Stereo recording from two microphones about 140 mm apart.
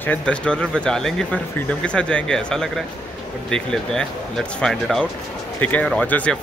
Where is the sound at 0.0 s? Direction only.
10° left (ahead or behind).